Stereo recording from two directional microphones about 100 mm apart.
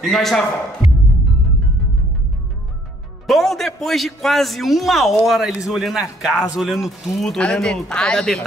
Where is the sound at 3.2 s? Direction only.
Centre (ahead or behind).